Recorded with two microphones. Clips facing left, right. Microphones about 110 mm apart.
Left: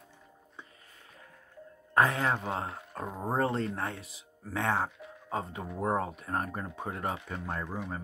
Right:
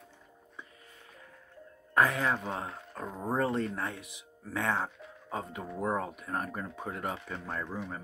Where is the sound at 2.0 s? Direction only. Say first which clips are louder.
Left 1 dB; 30° left (ahead or behind).